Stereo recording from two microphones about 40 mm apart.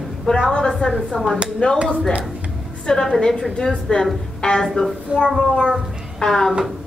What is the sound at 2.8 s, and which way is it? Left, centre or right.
A woman's voice, centre.